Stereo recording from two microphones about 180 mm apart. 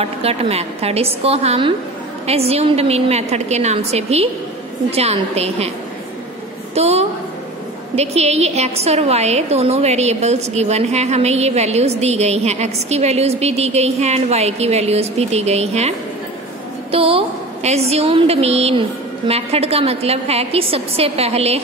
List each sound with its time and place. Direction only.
0.0 s a woman's voice: 35° right (ahead or behind)
6.7 s a woman's voice: 35° right (ahead or behind)
16.9 s a woman's voice: 30° right (ahead or behind)